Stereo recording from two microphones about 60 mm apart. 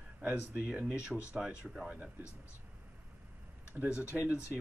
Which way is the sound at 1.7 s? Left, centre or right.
Centre.